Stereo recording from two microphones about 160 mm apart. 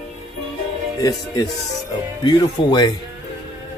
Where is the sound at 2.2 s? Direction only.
25° left (ahead or behind).